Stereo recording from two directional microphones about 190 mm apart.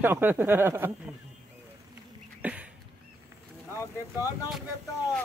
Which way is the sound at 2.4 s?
5° right (ahead or behind).